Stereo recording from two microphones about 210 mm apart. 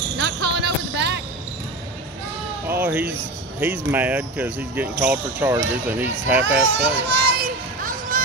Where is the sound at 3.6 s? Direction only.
10° right (ahead or behind).